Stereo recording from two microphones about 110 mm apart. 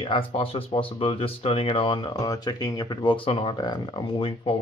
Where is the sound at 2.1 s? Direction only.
35° left (ahead or behind).